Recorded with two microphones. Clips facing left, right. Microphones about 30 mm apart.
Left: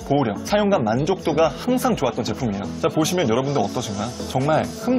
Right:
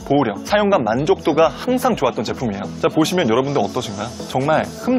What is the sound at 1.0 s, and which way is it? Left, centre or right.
Speech, right.